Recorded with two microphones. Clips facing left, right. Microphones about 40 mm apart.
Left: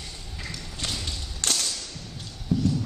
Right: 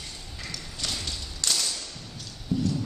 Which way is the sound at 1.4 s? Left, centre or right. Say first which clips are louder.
Left 1 dB; left.